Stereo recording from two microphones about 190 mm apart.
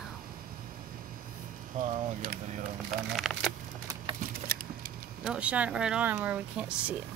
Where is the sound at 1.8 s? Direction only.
40° right (ahead or behind).